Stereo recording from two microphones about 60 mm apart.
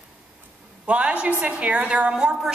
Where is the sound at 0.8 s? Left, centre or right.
Right.